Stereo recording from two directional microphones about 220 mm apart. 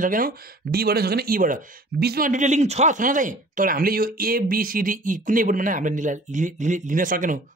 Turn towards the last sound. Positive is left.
turn(degrees=-35)  # may be behind; listen again after turning